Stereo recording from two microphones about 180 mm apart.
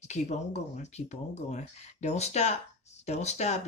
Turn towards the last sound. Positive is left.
turn(degrees=40)  # may be behind; listen again after turning